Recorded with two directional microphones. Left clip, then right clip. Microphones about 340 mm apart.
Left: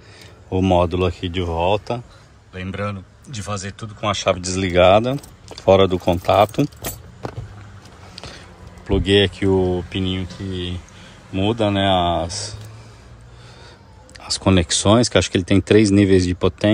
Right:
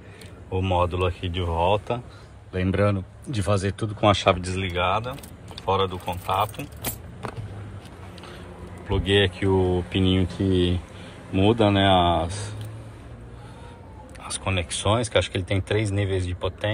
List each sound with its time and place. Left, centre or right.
0.5 s speech: centre
2.5 s speech: centre
4.7 s speech: centre
8.8 s speech: centre
14.2 s speech: centre